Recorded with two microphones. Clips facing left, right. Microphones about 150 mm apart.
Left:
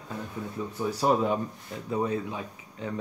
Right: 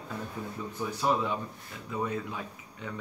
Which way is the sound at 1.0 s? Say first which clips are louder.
Left 4 dB; 40° left (ahead or behind).